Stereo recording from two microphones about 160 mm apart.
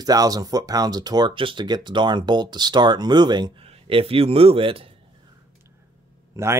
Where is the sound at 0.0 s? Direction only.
25° right (ahead or behind).